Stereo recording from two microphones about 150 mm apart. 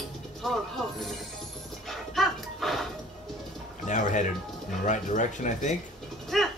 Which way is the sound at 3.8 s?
55° left (ahead or behind).